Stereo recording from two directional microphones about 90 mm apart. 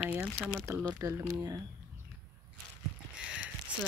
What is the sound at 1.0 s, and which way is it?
Speech, 40° right (ahead or behind).